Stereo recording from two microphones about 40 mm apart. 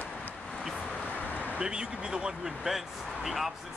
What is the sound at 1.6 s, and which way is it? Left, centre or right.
Speech, right.